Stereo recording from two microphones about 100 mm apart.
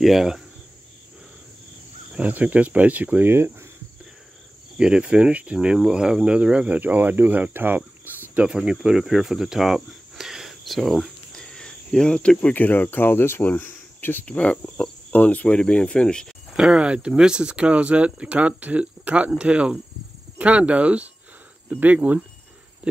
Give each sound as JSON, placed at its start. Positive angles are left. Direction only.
{"t": 0.0, "sound": "speech", "side_deg": 0}
{"t": 2.1, "sound": "speech", "side_deg": -15}
{"t": 4.7, "sound": "speech", "side_deg": -10}
{"t": 16.5, "sound": "speech", "side_deg": -10}